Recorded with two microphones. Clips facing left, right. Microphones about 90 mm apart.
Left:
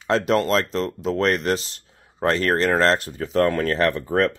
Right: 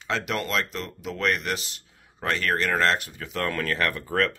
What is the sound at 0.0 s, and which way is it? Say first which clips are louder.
Speech: left 9 dB; 35° left (ahead or behind).